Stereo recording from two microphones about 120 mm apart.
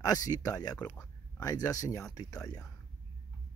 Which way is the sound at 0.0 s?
30° left (ahead or behind).